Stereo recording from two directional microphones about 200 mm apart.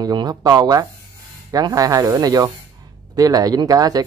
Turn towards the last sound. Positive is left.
turn(degrees=-20)  # may be behind; listen again after turning